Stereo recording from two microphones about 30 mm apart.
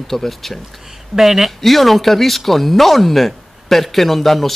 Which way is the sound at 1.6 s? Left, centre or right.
Centre.